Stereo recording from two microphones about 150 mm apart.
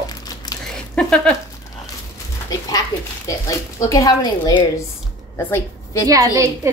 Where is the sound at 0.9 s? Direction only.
5° left (ahead or behind).